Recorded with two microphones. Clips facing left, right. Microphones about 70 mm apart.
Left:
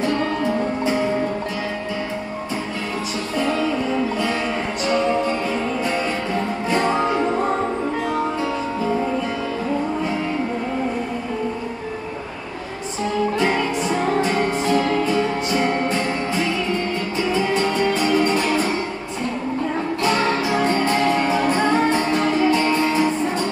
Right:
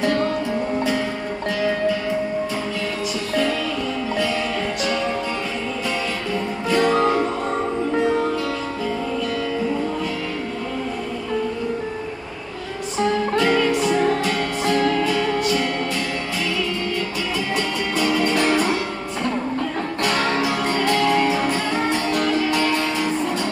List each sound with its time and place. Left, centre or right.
6.7 s music: left
13.4 s music: left
17.6 s music: left
20.0 s music: left